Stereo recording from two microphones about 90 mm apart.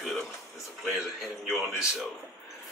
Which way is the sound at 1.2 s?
5° right (ahead or behind).